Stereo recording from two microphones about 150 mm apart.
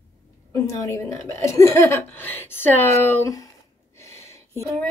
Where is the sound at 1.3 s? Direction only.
20° left (ahead or behind).